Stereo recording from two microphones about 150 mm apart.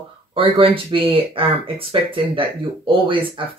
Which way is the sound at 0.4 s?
40° right (ahead or behind).